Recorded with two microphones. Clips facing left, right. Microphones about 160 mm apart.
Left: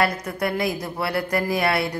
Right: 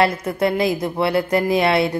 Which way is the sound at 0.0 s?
25° right (ahead or behind).